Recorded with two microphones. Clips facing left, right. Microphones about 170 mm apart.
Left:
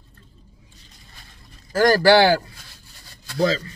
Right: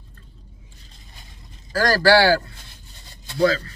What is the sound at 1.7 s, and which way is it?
Speech, 20° left (ahead or behind).